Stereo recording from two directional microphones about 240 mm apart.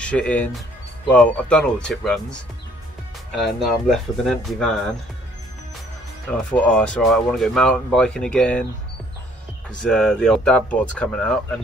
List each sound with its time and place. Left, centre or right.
0.0 s speech: centre
3.3 s speech: centre
6.3 s speech: centre
9.8 s speech: centre